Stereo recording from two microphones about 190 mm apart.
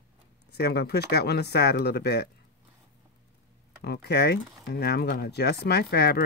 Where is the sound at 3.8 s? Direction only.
55° left (ahead or behind).